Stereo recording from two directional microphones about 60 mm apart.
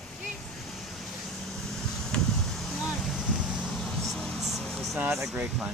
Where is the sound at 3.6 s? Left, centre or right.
Centre.